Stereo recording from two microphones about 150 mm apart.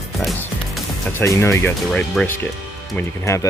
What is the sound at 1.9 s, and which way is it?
Speech, 5° left (ahead or behind).